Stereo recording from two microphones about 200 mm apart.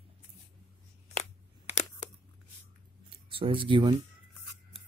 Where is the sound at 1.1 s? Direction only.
35° left (ahead or behind).